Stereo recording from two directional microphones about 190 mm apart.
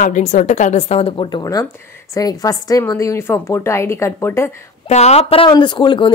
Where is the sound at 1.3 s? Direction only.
20° left (ahead or behind).